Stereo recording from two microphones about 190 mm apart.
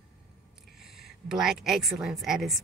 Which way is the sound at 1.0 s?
Centre (ahead or behind).